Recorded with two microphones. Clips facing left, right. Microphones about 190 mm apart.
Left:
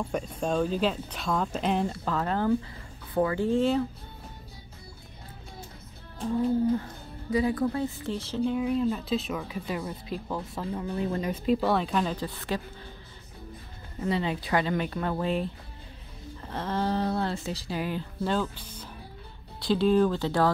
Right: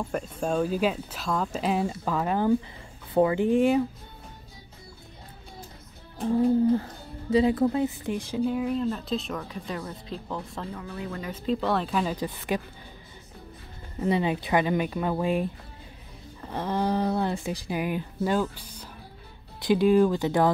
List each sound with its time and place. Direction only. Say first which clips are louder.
0.1 s speech: right 1 dB; 5° right (ahead or behind)
7.2 s speech: right 4 dB; 25° right (ahead or behind)
8.5 s speech: left 1 dB; centre (ahead or behind)
10.7 s speech: left 10 dB; 25° left (ahead or behind)
11.4 s speech: even; 5° left (ahead or behind)
12.2 s speech: right 3 dB; 15° right (ahead or behind)
14.0 s speech: right 3 dB; 20° right (ahead or behind)
16.5 s speech: right 2 dB; 15° right (ahead or behind)